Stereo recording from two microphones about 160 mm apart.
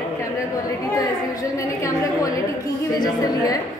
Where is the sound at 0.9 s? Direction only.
20° left (ahead or behind).